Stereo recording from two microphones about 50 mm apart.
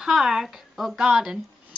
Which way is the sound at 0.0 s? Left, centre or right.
Centre.